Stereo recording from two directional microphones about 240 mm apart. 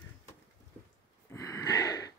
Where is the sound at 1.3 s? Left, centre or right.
Centre.